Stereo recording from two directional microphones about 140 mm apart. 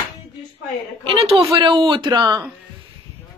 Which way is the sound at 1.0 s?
40° right (ahead or behind).